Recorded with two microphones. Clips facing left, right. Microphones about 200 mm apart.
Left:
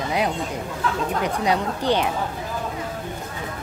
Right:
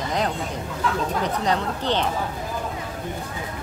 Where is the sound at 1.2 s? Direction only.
10° left (ahead or behind).